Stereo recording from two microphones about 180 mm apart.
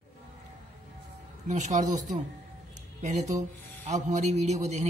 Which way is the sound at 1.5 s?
45° right (ahead or behind).